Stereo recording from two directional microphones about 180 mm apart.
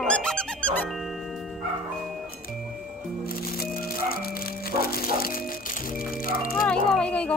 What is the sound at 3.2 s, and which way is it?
Music, 55° left (ahead or behind).